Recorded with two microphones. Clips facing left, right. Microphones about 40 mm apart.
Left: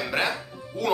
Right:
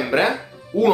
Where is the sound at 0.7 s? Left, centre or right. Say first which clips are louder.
Right 11 dB; right.